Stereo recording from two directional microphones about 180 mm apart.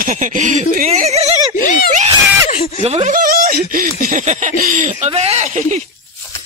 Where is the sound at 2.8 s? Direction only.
35° right (ahead or behind).